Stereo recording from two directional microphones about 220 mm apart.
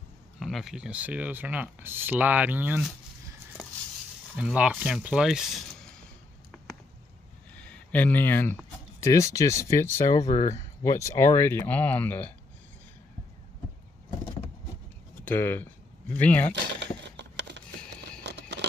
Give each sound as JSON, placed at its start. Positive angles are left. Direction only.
{"t": 0.4, "sound": "speech", "side_deg": 0}
{"t": 4.4, "sound": "speech", "side_deg": -5}
{"t": 7.5, "sound": "speech", "side_deg": 5}
{"t": 15.2, "sound": "speech", "side_deg": 10}
{"t": 16.8, "sound": "a sound", "side_deg": -50}